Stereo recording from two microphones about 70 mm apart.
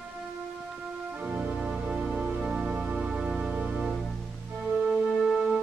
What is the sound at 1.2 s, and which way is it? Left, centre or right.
Organ, centre.